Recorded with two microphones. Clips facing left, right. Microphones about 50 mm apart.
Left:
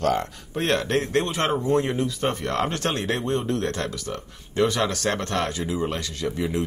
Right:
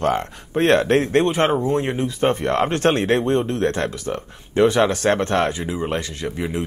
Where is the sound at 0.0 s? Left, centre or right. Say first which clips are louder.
Right 2 dB; right.